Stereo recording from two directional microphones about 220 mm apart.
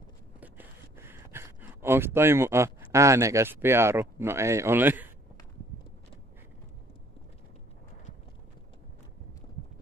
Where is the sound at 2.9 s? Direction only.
15° right (ahead or behind).